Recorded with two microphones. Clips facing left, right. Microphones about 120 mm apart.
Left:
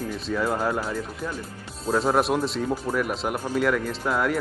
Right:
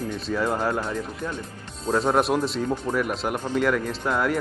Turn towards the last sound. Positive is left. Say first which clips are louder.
# even
turn(degrees=0)  # may be behind; listen again after turning